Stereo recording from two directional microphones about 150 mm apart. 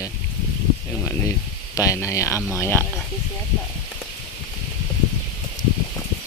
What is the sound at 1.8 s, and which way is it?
Speech, 20° left (ahead or behind).